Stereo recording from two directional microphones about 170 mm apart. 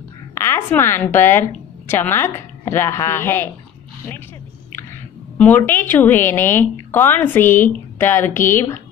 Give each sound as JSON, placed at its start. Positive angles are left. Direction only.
{"t": 0.3, "sound": "a woman's voice", "side_deg": 15}
{"t": 5.4, "sound": "a woman's voice", "side_deg": 10}